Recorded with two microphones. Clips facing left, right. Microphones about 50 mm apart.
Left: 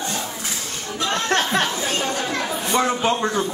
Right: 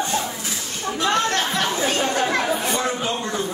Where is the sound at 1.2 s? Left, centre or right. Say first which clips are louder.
Left 2 dB; left.